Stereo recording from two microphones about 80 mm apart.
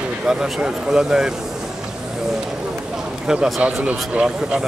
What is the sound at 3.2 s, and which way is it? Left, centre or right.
A man's voice, centre.